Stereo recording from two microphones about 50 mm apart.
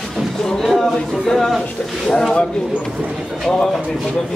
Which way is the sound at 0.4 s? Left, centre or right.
Centre.